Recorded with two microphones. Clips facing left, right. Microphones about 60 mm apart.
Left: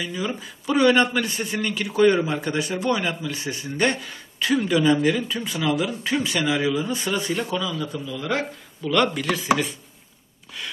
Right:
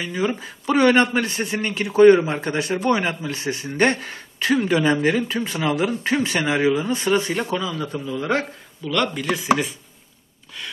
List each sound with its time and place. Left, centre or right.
0.0 s a man's voice: right
8.8 s speech: centre